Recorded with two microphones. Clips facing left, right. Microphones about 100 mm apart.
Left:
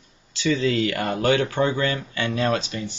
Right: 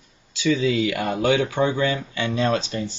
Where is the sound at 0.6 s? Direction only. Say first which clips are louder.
Right 1 dB; 15° right (ahead or behind).